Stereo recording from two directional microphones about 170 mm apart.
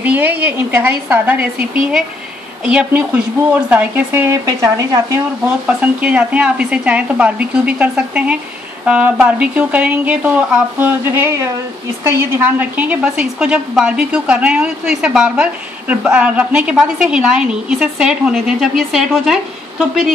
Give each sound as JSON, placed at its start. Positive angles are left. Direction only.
{"t": 0.0, "sound": "a woman's voice", "side_deg": -10}